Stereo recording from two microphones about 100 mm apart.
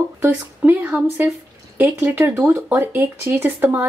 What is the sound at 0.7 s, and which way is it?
Speech, 20° right (ahead or behind).